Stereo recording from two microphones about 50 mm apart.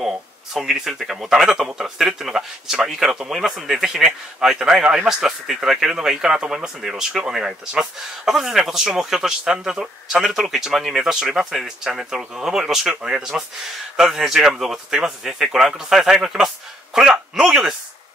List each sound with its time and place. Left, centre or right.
0.0 s speech: centre
13.9 s a man's voice: centre